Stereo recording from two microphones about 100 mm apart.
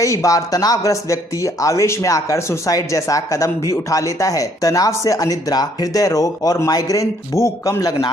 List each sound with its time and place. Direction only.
0.0 s speech: 35° left (ahead or behind)